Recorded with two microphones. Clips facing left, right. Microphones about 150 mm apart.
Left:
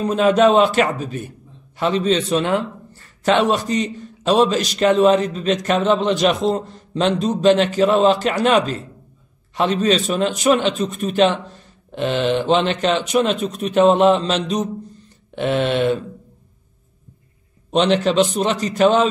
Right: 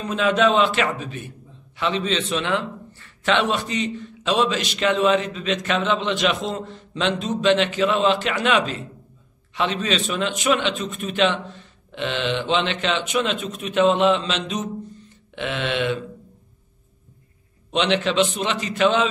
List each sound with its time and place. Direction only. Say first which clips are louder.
0.0 s a man's voice: left 5 dB; 40° left (ahead or behind)
17.6 s a man's voice: left 5 dB; 40° left (ahead or behind)